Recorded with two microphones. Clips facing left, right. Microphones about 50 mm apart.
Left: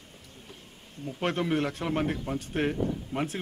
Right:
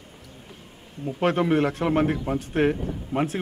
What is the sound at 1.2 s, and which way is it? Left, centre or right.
A man's voice, centre.